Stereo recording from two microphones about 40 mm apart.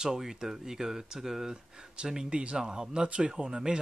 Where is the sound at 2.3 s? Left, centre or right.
Right.